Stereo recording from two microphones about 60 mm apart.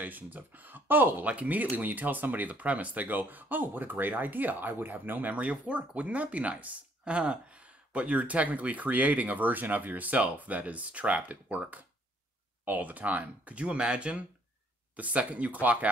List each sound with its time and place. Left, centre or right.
0.0 s speech: right
1.3 s speech: right